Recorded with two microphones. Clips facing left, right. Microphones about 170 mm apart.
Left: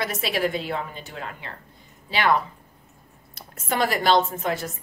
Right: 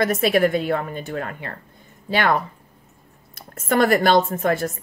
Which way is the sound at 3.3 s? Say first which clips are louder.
Right 7 dB; 50° right (ahead or behind).